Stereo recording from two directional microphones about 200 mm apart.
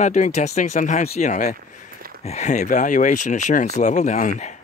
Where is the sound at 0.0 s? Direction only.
35° left (ahead or behind).